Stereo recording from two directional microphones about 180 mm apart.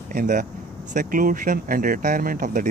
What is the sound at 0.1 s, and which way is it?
Speech, 50° right (ahead or behind).